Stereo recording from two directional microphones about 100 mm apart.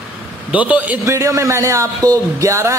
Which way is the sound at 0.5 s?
15° right (ahead or behind).